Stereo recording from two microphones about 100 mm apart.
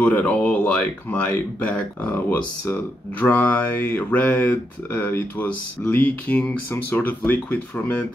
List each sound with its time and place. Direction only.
0.0 s speech: 15° left (ahead or behind)